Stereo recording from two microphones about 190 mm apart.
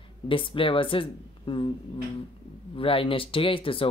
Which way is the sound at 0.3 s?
30° left (ahead or behind).